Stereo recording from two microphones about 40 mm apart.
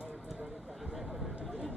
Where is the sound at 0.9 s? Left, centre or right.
Centre.